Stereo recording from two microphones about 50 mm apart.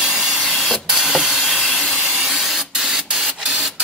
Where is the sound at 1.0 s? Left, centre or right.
Centre.